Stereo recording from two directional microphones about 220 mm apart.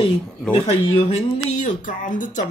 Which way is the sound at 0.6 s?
30° left (ahead or behind).